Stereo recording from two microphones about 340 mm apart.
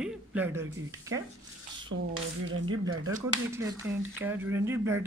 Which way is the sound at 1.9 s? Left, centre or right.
Right.